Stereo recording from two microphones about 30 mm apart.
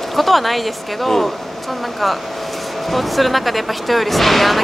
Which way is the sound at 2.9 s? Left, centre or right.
Centre.